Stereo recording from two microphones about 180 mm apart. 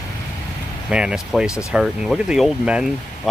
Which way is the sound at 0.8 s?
5° right (ahead or behind).